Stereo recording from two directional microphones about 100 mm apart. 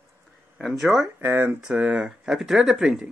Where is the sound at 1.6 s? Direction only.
10° right (ahead or behind).